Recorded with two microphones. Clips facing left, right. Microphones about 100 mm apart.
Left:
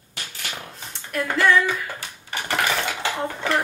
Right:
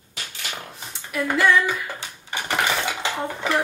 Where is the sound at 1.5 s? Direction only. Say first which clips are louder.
Even; 15° right (ahead or behind).